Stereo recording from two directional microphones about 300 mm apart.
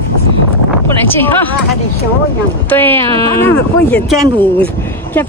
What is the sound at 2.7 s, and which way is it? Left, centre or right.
Speech, centre.